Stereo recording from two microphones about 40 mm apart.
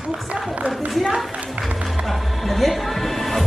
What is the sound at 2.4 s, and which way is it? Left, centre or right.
Music, centre.